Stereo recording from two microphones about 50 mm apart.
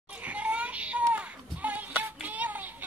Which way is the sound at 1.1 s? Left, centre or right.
Right.